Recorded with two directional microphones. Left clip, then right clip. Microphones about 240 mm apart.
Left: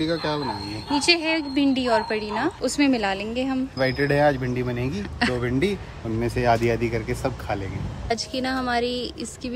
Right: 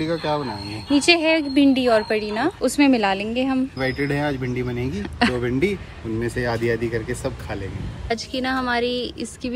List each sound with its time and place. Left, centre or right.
0.0 s a woman's voice: centre
6.7 s speech: left
8.1 s a woman's voice: centre